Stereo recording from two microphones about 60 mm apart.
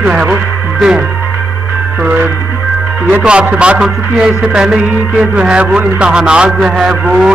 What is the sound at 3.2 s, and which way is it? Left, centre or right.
Music, centre.